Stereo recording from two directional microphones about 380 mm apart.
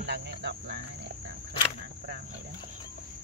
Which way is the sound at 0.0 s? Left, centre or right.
Right.